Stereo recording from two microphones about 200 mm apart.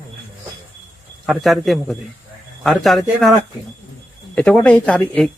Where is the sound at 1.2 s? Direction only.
Centre (ahead or behind).